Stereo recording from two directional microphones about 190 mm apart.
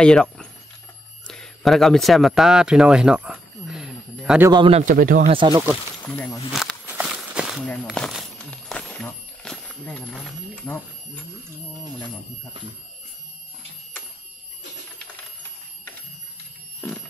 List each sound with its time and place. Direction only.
0.0 s speech: 5° left (ahead or behind)
1.2 s a sound: 5° left (ahead or behind)
4.5 s a man's voice: 25° right (ahead or behind)
4.8 s speech: 45° right (ahead or behind)
5.3 s a man's voice: 25° right (ahead or behind)
6.0 s speech: 5° left (ahead or behind)
6.5 s walk: centre (ahead or behind)
7.8 s a sound: centre (ahead or behind)